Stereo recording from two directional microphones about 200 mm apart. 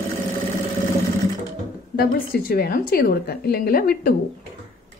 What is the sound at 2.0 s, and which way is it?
A woman's voice, 50° left (ahead or behind).